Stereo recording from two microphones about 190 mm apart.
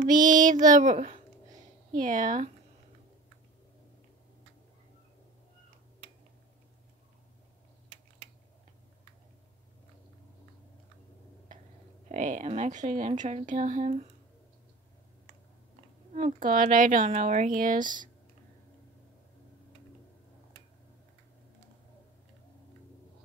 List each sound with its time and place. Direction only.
0.0 s speech: 45° right (ahead or behind)
12.1 s speech: 40° right (ahead or behind)
16.2 s speech: 40° right (ahead or behind)